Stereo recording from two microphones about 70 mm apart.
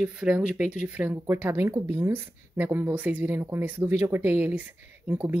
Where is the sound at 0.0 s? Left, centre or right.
Centre.